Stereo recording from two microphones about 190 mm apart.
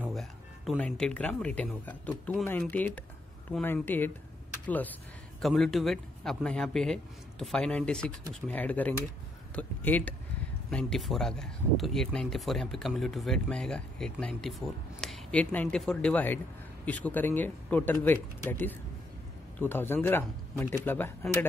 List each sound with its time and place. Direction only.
0.0 s speech: centre (ahead or behind)